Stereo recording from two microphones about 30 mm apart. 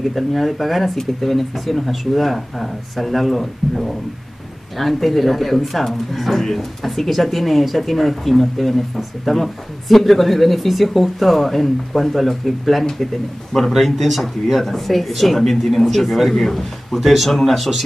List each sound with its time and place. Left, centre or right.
0.1 s a man's voice: centre
16.9 s speech: centre